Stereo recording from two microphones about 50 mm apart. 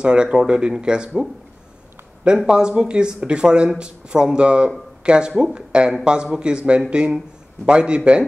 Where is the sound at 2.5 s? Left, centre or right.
Centre.